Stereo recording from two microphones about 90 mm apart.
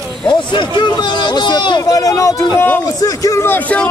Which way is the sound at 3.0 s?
40° left (ahead or behind).